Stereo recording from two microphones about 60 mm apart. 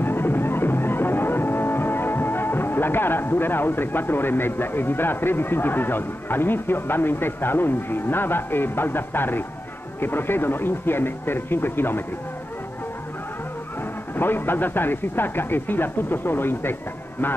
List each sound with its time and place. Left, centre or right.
0.0 s music: left
9.9 s a man's voice: left
14.1 s a man's voice: left